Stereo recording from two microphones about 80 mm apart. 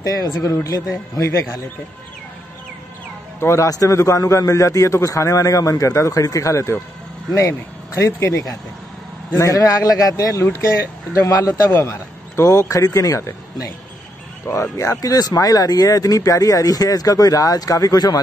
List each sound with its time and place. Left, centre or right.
0.0 s speech: left
3.3 s speech: left
9.3 s speech: left